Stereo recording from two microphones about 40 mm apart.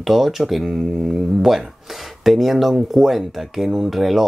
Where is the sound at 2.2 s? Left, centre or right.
Centre.